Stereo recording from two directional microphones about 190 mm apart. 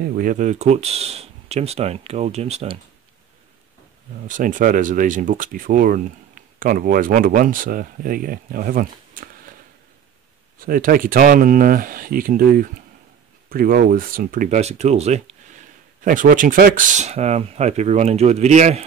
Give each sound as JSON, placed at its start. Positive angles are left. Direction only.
{"t": 0.0, "sound": "speech", "side_deg": -50}
{"t": 4.3, "sound": "speech", "side_deg": -45}
{"t": 10.6, "sound": "speech", "side_deg": -50}